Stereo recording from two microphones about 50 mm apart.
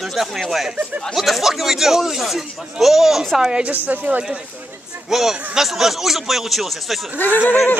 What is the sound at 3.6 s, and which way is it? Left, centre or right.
Speech, right.